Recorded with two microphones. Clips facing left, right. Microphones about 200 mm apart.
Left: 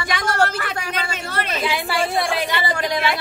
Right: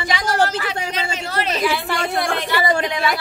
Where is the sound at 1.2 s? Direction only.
60° left (ahead or behind).